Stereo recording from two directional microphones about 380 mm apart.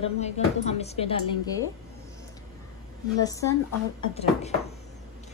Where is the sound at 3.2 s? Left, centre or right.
Centre.